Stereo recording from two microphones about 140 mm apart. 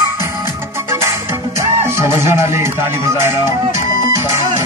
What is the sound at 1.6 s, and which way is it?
Music, 20° right (ahead or behind).